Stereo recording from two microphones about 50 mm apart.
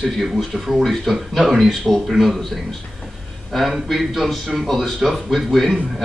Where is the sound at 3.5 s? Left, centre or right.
Centre.